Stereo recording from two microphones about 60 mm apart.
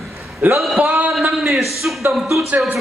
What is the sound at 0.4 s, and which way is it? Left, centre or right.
Speech, right.